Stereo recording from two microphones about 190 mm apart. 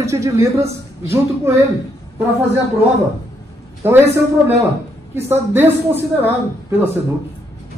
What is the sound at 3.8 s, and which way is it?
A man's voice, 15° right (ahead or behind).